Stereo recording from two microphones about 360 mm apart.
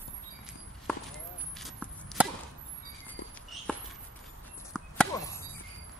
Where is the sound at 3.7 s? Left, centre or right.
Centre.